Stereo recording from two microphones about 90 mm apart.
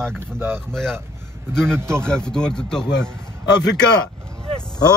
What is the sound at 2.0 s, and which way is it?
Speech, 10° left (ahead or behind).